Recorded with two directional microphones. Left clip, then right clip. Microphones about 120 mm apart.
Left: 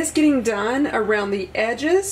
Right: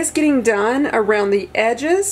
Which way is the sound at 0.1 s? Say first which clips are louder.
Right 3 dB; 45° right (ahead or behind).